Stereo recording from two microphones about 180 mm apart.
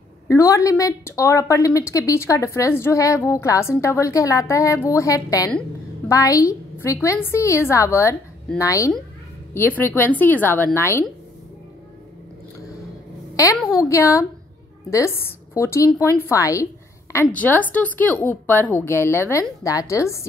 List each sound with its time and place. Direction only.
0.3 s a woman's voice: 15° left (ahead or behind)
13.8 s a woman's voice: 15° left (ahead or behind)